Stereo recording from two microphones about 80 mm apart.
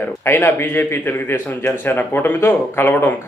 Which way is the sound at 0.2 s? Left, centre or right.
Left.